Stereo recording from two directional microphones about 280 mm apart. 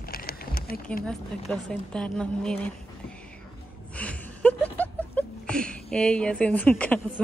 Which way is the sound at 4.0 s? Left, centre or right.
Centre.